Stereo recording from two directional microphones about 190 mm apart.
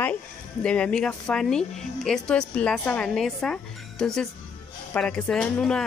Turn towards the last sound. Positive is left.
turn(degrees=5)  # may be behind; listen again after turning